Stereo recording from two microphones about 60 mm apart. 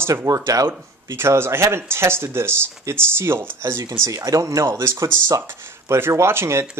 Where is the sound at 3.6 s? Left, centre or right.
Right.